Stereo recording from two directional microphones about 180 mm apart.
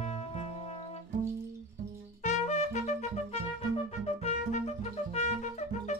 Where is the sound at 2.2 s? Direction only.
40° left (ahead or behind).